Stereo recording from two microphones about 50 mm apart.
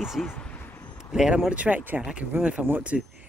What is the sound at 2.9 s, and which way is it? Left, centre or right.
Speech, centre.